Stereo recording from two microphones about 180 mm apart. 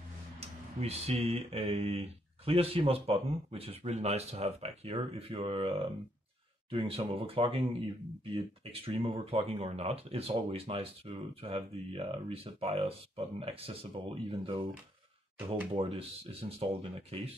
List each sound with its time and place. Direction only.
0.4 s speech: 35° right (ahead or behind)
15.3 s speech: 10° right (ahead or behind)
15.7 s speech: 35° right (ahead or behind)